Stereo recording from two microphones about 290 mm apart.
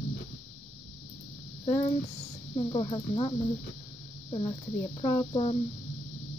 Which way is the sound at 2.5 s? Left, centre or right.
Centre.